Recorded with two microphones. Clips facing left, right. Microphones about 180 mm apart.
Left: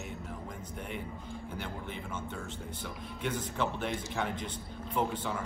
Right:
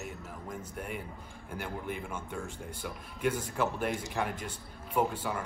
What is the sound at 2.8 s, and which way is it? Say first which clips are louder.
Speech: right 6 dB; 10° right (ahead or behind).